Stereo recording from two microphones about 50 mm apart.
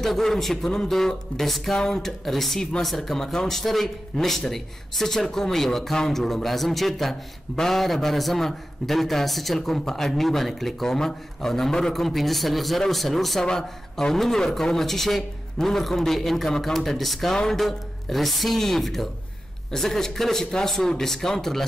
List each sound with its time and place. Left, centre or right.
0.0 s a man's voice: centre